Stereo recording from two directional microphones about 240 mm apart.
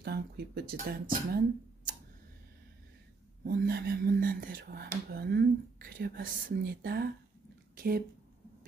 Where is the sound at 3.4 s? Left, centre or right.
Right.